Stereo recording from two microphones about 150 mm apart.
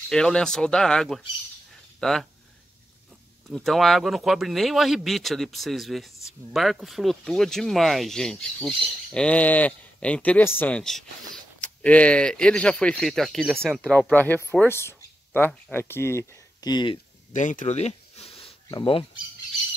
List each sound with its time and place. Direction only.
0.1 s speech: 5° left (ahead or behind)
3.4 s speech: centre (ahead or behind); by 17.0 s 30° left (ahead or behind)
17.3 s a sound: 60° left (ahead or behind); by 18.5 s 40° left (ahead or behind)
18.7 s speech: 35° left (ahead or behind)